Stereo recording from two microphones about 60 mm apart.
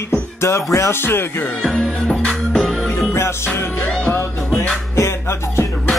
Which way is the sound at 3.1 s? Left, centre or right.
Left.